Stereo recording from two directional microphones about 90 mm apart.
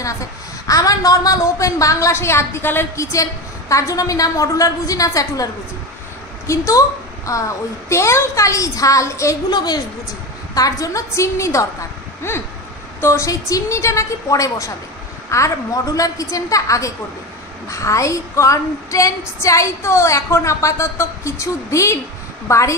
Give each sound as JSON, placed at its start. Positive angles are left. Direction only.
{"t": 0.7, "sound": "a woman's voice", "side_deg": 40}
{"t": 9.5, "sound": "a woman's voice", "side_deg": 50}
{"t": 10.5, "sound": "a woman's voice", "side_deg": 40}
{"t": 12.2, "sound": "vehicle", "side_deg": 30}
{"t": 13.0, "sound": "a woman's voice", "side_deg": 35}